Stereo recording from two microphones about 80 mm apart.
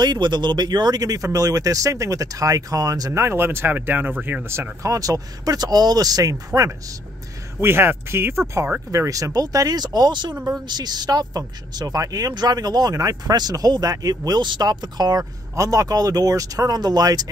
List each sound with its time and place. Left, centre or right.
0.0 s speech: right
3.1 s speech: right
7.6 s speech: right
14.4 s speech: right